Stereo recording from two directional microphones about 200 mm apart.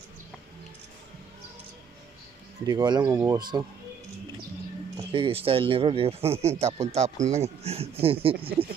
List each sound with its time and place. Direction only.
2.6 s speech: 20° right (ahead or behind)
5.1 s speech: 25° right (ahead or behind)